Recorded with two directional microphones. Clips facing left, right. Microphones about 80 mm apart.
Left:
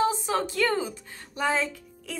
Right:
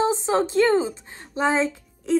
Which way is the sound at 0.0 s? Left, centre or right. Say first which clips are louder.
Right 4 dB; right.